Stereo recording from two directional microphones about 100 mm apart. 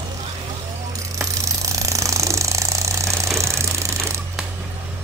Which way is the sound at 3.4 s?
30° right (ahead or behind).